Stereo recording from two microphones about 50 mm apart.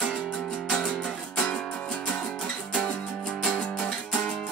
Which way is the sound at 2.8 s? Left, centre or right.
Centre.